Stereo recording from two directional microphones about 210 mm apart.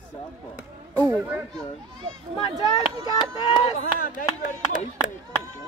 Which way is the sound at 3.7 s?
40° left (ahead or behind).